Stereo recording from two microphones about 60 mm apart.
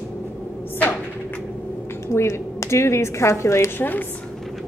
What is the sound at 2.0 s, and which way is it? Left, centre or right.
A woman's voice, left.